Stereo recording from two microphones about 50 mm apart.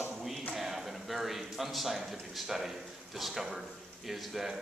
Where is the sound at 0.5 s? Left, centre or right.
Centre.